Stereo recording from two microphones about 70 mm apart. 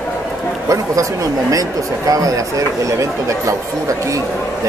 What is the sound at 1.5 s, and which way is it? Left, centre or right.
Speech, right.